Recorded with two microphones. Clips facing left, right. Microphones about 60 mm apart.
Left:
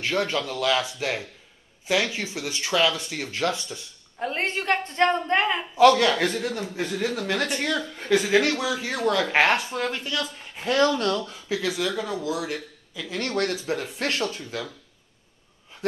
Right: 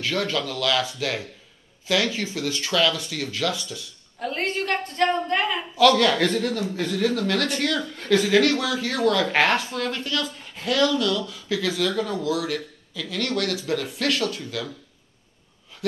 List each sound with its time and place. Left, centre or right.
0.0 s speech: left
10.7 s speech: left
11.4 s speech: centre
12.3 s speech: left